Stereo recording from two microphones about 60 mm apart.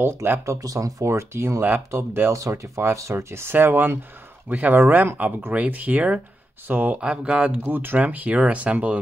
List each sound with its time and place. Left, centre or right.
0.0 s speech: right
0.6 s speech: right
1.0 s speech: right
2.4 s speech: right
4.5 s speech: right
7.0 s speech: centre
7.6 s speech: right
8.0 s speech: right